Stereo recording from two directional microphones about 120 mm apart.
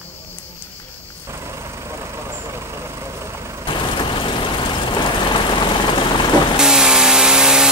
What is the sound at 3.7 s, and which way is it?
Vehicle, 40° left (ahead or behind).